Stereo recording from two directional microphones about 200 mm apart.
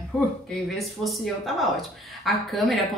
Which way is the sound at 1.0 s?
Centre (ahead or behind).